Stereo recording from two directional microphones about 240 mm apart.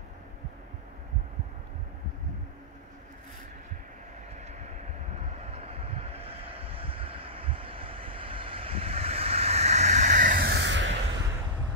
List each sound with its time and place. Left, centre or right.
4.4 s vehicle: right